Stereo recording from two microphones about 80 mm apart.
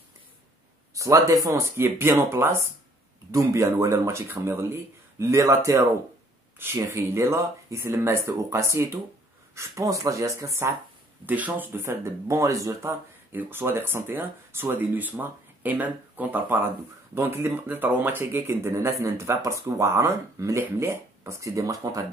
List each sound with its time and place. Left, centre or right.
0.9 s a man's voice: right
1.5 s speech: right
11.2 s speech: right
13.3 s speech: right